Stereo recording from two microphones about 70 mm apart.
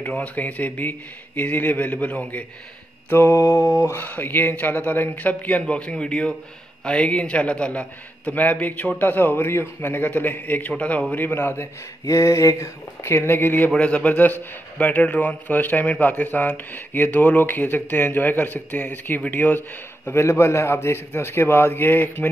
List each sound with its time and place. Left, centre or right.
0.0 s a man's voice: left
3.1 s mantra: left
4.0 s a man's voice: left
20.1 s speech: left